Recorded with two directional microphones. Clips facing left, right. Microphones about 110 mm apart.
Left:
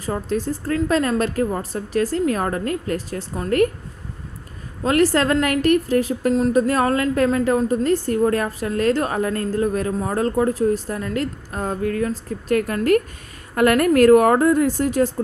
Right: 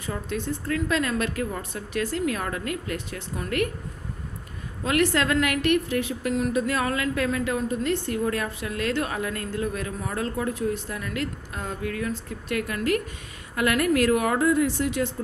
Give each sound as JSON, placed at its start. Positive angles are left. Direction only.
{"t": 0.0, "sound": "a woman's voice", "side_deg": 35}
{"t": 4.8, "sound": "a woman's voice", "side_deg": 35}